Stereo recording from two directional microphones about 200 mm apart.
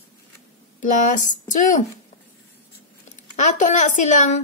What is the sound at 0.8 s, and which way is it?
Speech, 40° left (ahead or behind).